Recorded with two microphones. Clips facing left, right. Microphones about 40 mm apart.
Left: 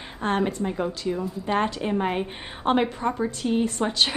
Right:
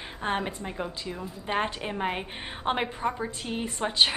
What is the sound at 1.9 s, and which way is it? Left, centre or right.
A woman's voice, centre.